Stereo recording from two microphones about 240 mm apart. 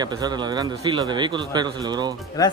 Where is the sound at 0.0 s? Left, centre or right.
Centre.